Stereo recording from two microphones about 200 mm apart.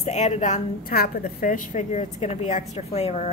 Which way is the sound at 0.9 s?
50° left (ahead or behind).